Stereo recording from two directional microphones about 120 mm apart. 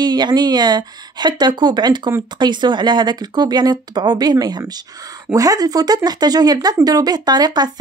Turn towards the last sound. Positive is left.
turn(degrees=-35)  # may be behind; listen again after turning